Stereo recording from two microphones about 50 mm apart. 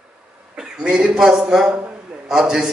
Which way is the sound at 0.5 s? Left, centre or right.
Centre.